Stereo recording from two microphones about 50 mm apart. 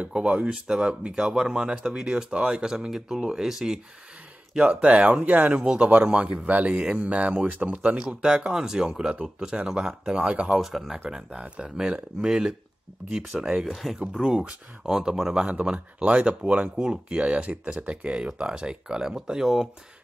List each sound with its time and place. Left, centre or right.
0.0 s speech: right
5.2 s speech: right
5.5 s speech: centre
8.3 s speech: centre
10.6 s speech: centre
13.7 s speech: centre
14.2 s speech: centre
15.6 s speech: right; by 19.7 s centre